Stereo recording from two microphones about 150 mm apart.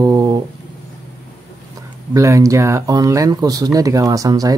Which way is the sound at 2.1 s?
20° right (ahead or behind).